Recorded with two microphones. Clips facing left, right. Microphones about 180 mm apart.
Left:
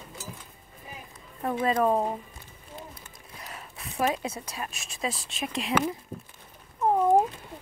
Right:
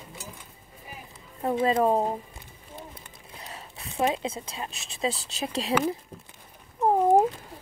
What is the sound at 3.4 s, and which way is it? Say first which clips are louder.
Speech: even; 25° right (ahead or behind).